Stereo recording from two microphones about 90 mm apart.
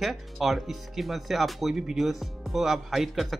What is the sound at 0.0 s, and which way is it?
Speech, centre (ahead or behind).